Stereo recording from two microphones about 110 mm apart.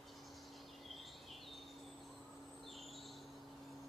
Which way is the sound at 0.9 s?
Centre (ahead or behind).